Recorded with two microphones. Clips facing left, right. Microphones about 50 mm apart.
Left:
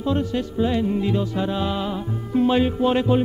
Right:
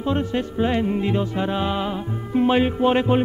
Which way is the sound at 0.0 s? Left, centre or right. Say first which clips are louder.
Even; right.